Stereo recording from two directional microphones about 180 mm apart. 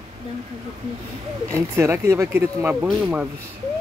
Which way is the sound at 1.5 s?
15° right (ahead or behind).